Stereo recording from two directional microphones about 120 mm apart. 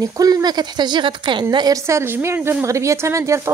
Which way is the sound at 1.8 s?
20° right (ahead or behind).